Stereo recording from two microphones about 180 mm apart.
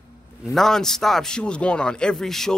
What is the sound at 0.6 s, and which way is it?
A man's voice, centre (ahead or behind).